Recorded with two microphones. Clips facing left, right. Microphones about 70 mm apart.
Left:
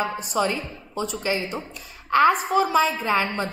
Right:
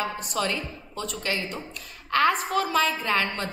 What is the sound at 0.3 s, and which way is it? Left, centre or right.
A woman's voice, centre.